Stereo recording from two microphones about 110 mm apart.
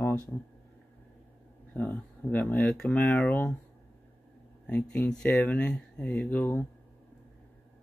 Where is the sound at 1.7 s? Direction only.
15° left (ahead or behind).